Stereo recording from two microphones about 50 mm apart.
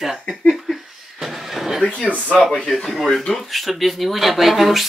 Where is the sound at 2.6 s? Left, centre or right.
Centre.